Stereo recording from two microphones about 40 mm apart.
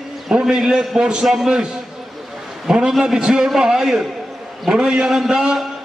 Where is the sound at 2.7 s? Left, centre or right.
Centre.